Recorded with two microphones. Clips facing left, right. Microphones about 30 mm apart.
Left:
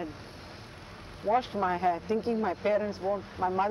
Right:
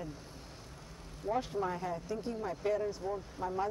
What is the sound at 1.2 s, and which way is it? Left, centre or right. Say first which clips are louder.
Speech: left 7 dB; left.